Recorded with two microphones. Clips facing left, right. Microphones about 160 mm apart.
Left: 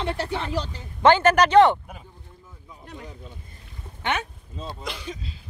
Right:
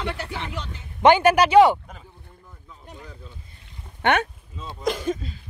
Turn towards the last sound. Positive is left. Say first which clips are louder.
# right 9 dB
turn(degrees=-50)  # may be behind; listen again after turning